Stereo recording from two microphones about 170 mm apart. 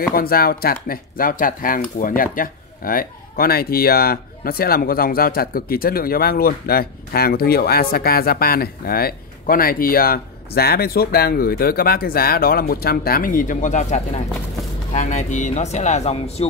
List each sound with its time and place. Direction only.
0.1 s speech: 60° left (ahead or behind); by 16.4 s 40° left (ahead or behind)